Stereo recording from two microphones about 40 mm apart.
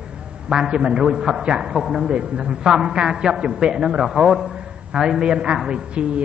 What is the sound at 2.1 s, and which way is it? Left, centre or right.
A woman's voice, right.